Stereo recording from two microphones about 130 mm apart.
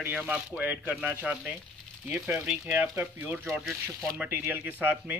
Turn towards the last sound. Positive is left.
turn(degrees=-10)  # may be behind; listen again after turning